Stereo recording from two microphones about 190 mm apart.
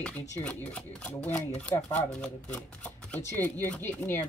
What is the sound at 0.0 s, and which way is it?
Speech, 5° left (ahead or behind).